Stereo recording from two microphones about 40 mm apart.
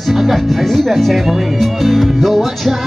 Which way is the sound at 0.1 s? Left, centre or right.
Centre.